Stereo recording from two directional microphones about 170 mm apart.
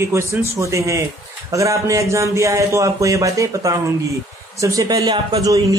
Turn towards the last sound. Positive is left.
turn(degrees=-20)  # may be behind; listen again after turning